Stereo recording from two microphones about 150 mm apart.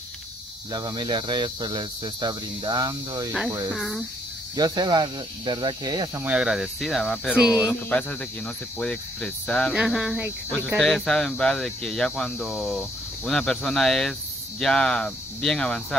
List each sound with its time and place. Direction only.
0.7 s cricket: 30° right (ahead or behind)
3.7 s speech: centre (ahead or behind)
4.6 s cricket: 25° right (ahead or behind)
6.2 s speech: 5° right (ahead or behind)
8.7 s speech: 5° left (ahead or behind)